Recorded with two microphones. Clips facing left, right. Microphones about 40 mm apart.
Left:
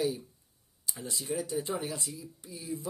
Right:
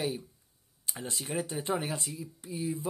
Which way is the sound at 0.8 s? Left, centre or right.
Right.